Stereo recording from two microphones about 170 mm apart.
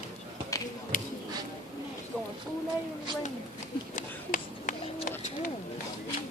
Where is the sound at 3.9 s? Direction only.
50° left (ahead or behind).